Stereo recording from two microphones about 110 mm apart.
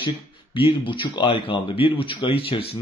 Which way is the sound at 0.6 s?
50° left (ahead or behind).